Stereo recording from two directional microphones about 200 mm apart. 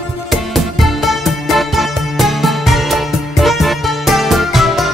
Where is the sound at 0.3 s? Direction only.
Centre (ahead or behind).